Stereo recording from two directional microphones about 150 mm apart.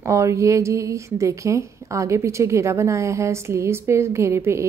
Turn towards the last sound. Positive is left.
turn(degrees=-20)  # may be behind; listen again after turning